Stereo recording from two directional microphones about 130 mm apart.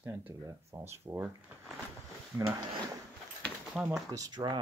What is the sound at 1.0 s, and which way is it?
Speech, 15° right (ahead or behind).